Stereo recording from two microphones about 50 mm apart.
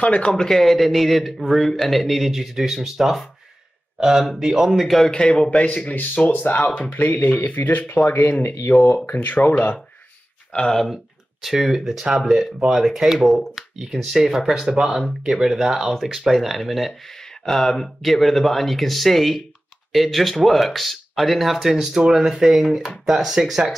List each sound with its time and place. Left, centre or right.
0.0 s speech: left
0.3 s speech: centre
5.1 s speech: centre
6.2 s speech: left
6.5 s speech: left
8.6 s speech: left
8.9 s speech: left
10.5 s speech: left
11.4 s speech: centre